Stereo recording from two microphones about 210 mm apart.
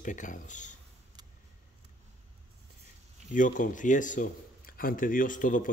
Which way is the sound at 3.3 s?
40° left (ahead or behind).